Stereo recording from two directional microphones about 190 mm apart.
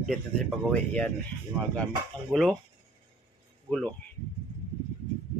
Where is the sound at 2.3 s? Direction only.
Centre (ahead or behind).